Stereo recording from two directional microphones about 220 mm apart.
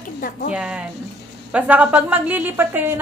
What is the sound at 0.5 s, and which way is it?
A woman's voice, 5° right (ahead or behind).